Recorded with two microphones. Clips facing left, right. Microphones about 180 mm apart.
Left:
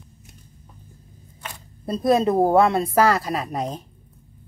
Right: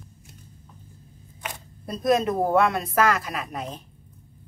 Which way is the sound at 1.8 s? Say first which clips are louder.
Left 3 dB; 30° left (ahead or behind).